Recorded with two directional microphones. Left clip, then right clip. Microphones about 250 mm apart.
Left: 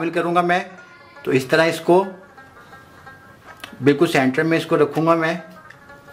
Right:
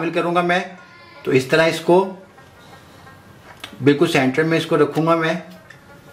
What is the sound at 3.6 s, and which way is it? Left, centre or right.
Stir, centre.